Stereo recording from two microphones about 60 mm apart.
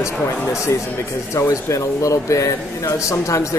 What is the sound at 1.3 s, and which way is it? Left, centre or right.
Speech, left.